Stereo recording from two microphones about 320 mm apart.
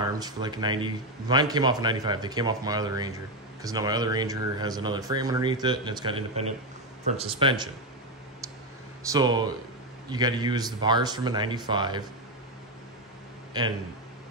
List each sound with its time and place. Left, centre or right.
0.2 s a man's voice: centre
9.1 s a man's voice: centre